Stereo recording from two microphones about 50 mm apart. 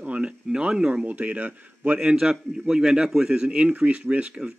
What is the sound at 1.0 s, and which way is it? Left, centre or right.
Speech, right.